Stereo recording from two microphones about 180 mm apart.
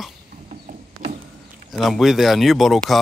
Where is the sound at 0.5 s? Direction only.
45° right (ahead or behind).